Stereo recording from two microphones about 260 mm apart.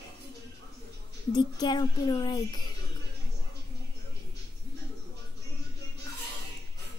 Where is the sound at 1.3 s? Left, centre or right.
Centre.